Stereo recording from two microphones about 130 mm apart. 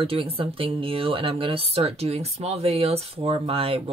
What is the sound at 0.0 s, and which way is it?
Speech, 45° right (ahead or behind).